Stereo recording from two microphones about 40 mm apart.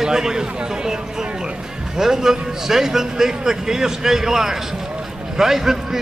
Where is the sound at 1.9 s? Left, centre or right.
Centre.